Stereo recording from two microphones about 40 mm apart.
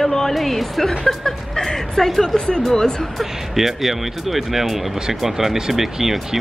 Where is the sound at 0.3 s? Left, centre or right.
Centre.